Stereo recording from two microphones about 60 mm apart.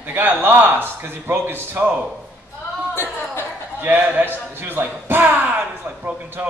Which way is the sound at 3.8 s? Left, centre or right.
Right.